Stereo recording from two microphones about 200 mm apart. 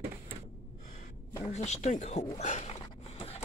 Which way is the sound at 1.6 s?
35° left (ahead or behind).